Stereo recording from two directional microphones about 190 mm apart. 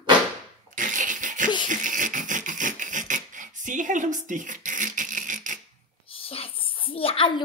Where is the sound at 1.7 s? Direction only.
45° right (ahead or behind).